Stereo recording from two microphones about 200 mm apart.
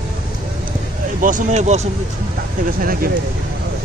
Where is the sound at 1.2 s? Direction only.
40° right (ahead or behind).